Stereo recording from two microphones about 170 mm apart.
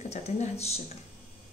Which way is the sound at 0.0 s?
40° left (ahead or behind).